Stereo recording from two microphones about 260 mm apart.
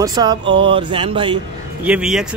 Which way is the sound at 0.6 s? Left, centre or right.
Centre.